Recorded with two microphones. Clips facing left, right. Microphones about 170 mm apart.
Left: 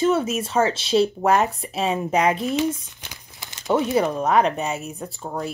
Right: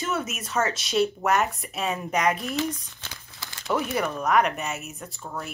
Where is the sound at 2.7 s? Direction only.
20° left (ahead or behind).